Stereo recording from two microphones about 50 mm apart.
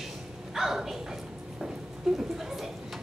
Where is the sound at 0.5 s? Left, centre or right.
Centre.